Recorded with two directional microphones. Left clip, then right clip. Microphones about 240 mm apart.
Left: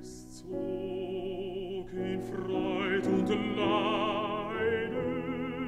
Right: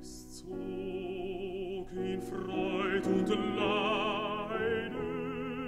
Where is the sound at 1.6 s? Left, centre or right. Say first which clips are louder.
Left 1 dB; right.